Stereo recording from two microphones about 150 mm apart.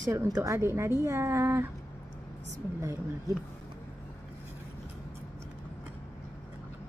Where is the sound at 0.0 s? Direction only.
20° right (ahead or behind).